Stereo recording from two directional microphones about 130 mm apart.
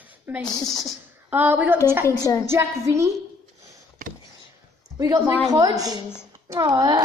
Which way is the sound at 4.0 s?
90° right.